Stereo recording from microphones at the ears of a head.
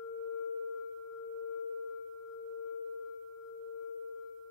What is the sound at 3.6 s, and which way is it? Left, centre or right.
Singing bowl, left.